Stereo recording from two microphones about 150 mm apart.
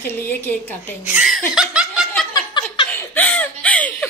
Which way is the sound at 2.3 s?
30° left (ahead or behind).